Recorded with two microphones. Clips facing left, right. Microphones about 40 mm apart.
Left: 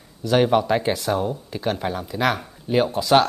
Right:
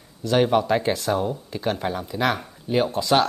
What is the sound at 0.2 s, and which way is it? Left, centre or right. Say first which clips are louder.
Speech: left 1 dB; centre.